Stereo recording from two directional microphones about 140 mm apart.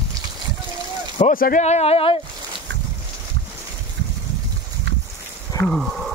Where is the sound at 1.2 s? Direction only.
80° left.